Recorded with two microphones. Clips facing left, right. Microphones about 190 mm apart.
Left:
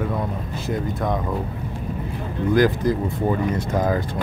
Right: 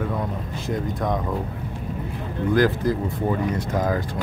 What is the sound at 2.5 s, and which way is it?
Speech, 15° left (ahead or behind).